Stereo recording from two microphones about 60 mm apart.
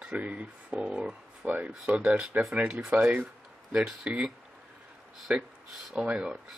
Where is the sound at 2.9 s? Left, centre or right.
Right.